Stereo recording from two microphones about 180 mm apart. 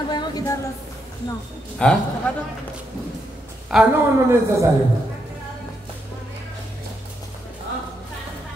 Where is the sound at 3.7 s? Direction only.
5° right (ahead or behind).